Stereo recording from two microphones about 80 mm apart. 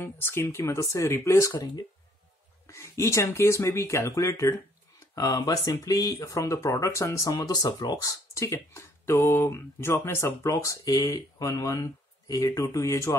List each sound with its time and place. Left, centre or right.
0.0 s speech: left
2.6 s speech: left
5.1 s speech: left
8.5 s speech: left